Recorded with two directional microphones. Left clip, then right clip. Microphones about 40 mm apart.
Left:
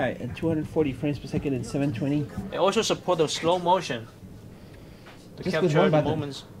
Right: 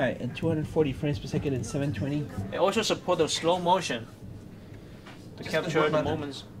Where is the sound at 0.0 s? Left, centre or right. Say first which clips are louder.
Left 1 dB; centre.